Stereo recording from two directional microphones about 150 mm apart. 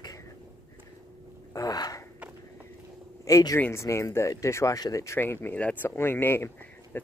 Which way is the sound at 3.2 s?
20° left (ahead or behind).